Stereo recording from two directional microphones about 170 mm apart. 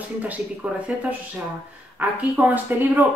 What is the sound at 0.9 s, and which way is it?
Speech, 10° right (ahead or behind).